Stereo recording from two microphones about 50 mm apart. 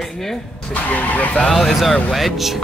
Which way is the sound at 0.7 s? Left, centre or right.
Left.